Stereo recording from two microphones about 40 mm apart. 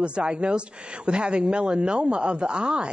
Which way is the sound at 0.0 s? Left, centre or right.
Right.